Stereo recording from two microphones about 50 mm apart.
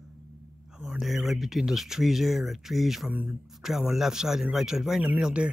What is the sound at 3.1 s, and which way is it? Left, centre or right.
Speech, right.